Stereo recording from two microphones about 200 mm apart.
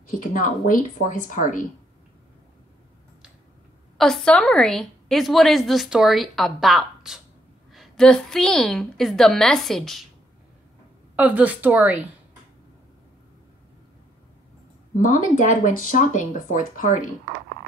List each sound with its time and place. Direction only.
0.1 s speech: 40° left (ahead or behind)
4.0 s a woman's voice: 5° left (ahead or behind)
11.1 s speech: 5° right (ahead or behind)
15.0 s speech: 40° left (ahead or behind)